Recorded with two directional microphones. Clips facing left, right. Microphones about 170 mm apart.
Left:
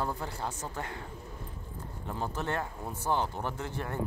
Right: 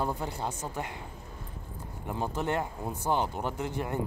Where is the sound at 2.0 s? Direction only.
15° right (ahead or behind).